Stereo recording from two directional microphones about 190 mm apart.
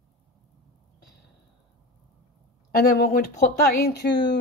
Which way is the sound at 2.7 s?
55° left (ahead or behind).